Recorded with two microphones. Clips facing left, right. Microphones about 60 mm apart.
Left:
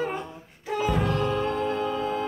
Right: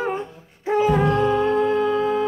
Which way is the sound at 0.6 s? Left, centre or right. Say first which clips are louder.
Right 7 dB; right.